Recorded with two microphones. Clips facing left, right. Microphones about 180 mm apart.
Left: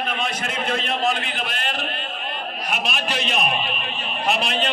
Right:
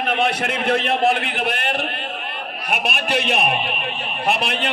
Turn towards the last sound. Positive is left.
turn(degrees=-60)  # may be behind; listen again after turning